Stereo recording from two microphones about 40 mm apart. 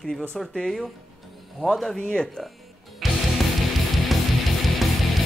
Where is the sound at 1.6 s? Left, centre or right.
Centre.